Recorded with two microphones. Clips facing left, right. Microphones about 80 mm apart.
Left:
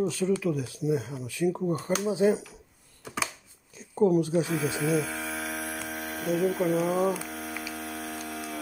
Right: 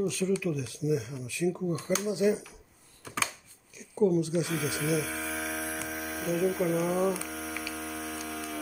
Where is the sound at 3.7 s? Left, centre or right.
Left.